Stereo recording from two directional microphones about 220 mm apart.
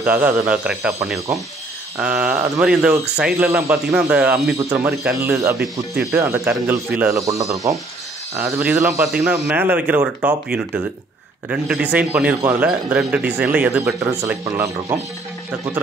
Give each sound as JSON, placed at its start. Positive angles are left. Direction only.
{"t": 0.0, "sound": "speech", "side_deg": -5}
{"t": 2.0, "sound": "a man's voice", "side_deg": -5}